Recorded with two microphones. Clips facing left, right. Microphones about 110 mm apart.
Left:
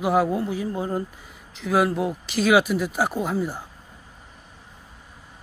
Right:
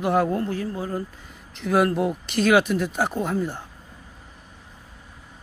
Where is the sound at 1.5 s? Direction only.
Centre (ahead or behind).